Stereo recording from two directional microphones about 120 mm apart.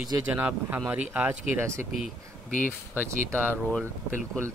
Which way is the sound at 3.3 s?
20° right (ahead or behind).